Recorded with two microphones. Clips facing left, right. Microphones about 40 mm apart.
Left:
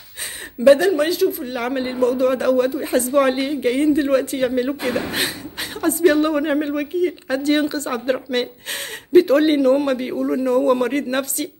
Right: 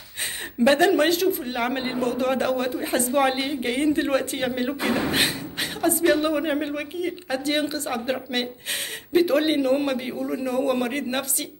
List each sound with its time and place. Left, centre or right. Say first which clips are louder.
0.7 s speech: left 5 dB; right
1.4 s speech: left 3 dB; right
2.0 s a man's voice: left 6 dB; right; by 3.8 s centre
3.8 s a man's voice: left 4 dB; right; by 9.6 s centre
9.6 s speech: left 6 dB; right
9.8 s a woman's voice: left 5 dB; centre
10.5 s a woman's voice: left 6 dB; centre